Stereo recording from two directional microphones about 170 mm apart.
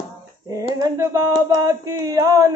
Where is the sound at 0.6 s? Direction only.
20° right (ahead or behind).